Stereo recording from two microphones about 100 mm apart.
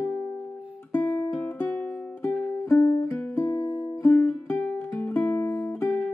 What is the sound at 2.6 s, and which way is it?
Music, 30° left (ahead or behind).